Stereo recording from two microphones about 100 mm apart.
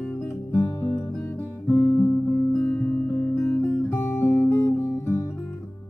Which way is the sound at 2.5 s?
20° left (ahead or behind).